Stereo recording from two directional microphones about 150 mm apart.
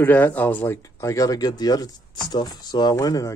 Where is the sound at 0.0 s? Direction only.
10° left (ahead or behind).